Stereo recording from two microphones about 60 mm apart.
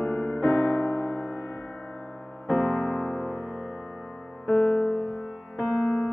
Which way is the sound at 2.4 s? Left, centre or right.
Left.